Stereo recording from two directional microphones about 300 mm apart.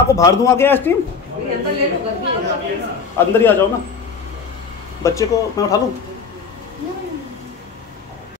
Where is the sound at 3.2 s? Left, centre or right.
Centre.